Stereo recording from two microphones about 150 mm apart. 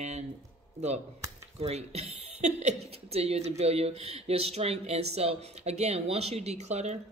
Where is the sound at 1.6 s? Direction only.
45° right (ahead or behind).